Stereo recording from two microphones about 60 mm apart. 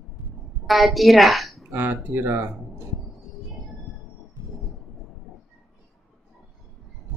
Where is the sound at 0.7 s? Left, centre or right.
Centre.